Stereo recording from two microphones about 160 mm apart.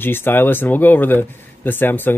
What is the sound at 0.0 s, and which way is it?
Speech, 15° left (ahead or behind).